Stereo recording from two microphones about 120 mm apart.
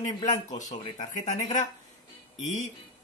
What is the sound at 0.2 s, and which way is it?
A man's voice, 90° left.